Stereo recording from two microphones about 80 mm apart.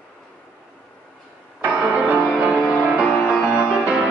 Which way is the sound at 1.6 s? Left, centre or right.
Centre.